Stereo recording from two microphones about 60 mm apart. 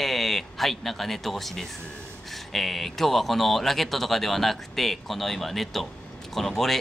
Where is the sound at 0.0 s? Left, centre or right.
Centre.